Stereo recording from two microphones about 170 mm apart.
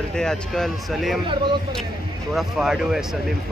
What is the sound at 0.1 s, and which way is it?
A man's voice, 5° left (ahead or behind).